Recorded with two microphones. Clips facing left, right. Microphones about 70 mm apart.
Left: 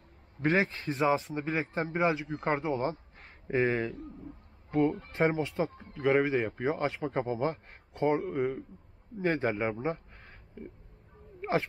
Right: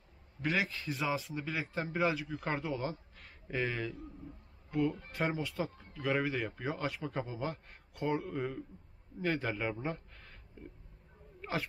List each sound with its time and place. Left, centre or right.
0.4 s a man's voice: left